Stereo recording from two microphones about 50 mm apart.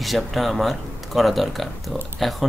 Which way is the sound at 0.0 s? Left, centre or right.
Centre.